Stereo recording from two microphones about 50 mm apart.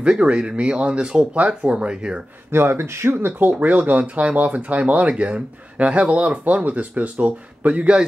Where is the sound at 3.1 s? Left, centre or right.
Right.